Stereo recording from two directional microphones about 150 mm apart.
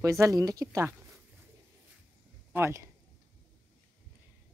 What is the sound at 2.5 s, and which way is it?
Speech, 15° right (ahead or behind).